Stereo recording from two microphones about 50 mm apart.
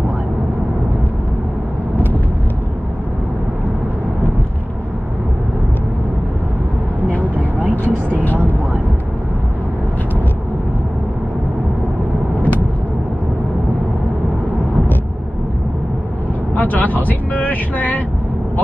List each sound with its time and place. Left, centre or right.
7.3 s vehicle: right
8.2 s vehicle: left
12.4 s vehicle: left
16.5 s vehicle: left